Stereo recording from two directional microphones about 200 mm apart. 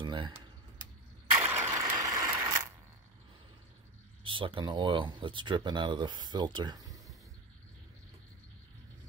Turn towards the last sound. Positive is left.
turn(degrees=-15)  # may be behind; listen again after turning